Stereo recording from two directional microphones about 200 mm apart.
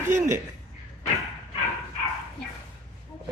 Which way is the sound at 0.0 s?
15° right (ahead or behind).